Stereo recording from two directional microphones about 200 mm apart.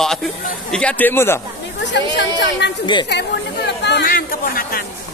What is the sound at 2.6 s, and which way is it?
Speech, 60° left (ahead or behind).